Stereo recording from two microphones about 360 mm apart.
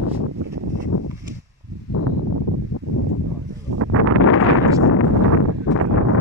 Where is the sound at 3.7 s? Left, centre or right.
Right.